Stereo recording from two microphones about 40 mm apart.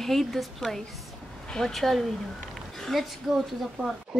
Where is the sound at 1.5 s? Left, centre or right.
Centre.